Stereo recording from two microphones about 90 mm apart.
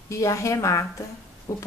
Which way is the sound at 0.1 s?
35° left (ahead or behind).